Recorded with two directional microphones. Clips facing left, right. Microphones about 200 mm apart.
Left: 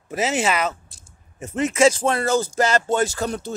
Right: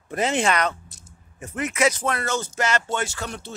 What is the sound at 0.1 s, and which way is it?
Speech, 5° left (ahead or behind).